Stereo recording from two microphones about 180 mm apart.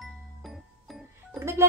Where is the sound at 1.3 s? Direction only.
15° right (ahead or behind).